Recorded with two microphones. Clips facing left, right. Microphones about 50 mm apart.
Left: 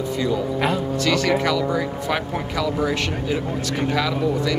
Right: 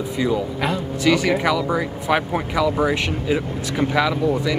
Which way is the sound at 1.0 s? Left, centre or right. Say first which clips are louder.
Right 3 dB; centre.